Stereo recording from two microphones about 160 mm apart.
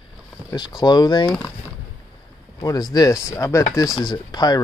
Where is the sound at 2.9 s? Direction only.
20° left (ahead or behind).